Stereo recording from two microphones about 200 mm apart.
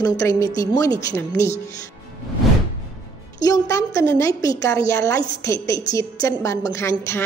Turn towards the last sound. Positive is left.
turn(degrees=15)  # may be behind; listen again after turning